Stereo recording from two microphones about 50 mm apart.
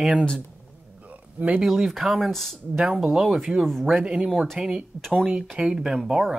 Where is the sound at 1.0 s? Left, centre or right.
Right.